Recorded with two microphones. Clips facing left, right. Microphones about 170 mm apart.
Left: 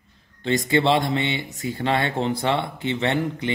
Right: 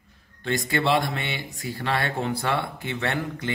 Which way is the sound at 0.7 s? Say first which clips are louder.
Left 4 dB; 20° left (ahead or behind).